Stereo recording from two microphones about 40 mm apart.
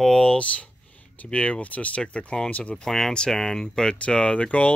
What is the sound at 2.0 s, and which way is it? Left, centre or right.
Speech, left.